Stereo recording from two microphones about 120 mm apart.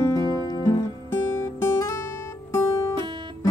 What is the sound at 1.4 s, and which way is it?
Guitar, 20° left (ahead or behind).